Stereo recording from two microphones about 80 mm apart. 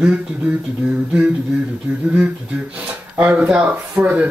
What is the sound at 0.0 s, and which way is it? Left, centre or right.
Speech, centre.